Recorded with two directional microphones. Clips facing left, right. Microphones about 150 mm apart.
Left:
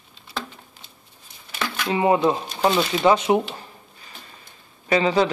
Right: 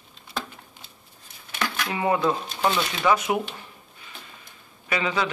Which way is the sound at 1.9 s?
25° left (ahead or behind).